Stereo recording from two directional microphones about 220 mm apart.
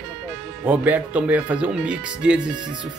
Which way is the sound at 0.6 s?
5° right (ahead or behind).